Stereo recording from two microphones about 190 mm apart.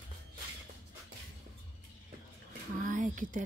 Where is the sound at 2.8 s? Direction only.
45° right (ahead or behind).